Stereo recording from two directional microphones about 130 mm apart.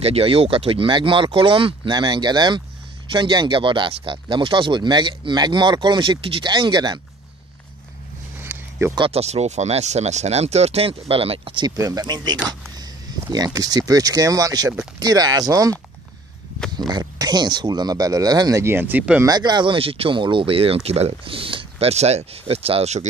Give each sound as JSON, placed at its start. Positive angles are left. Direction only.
{"t": 0.0, "sound": "speech", "side_deg": -50}
{"t": 8.4, "sound": "a sound", "side_deg": -20}
{"t": 8.9, "sound": "speech", "side_deg": -45}
{"t": 11.7, "sound": "speech", "side_deg": -25}
{"t": 16.7, "sound": "speech", "side_deg": -30}
{"t": 19.2, "sound": "speech", "side_deg": -35}